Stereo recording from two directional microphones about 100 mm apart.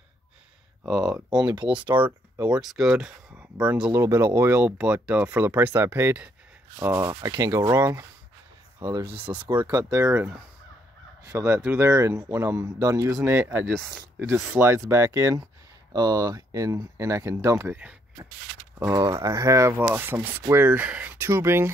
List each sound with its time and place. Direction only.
0.8 s speech: 5° right (ahead or behind)
2.4 s speech: 5° right (ahead or behind)
3.9 s speech: 25° right (ahead or behind)
8.7 s speech: 50° right (ahead or behind)
9.7 s speech: 40° right (ahead or behind)
19.1 s speech: 35° right (ahead or behind)
19.8 s speech: 20° right (ahead or behind)
21.3 s speech: 25° right (ahead or behind)